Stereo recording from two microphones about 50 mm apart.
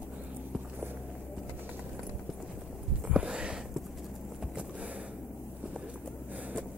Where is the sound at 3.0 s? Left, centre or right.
Centre.